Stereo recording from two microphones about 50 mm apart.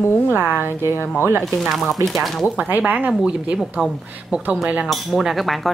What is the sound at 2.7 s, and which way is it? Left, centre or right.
Speech, right.